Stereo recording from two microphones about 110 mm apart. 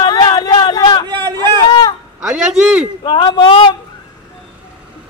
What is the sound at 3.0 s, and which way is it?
Speech, 50° left (ahead or behind).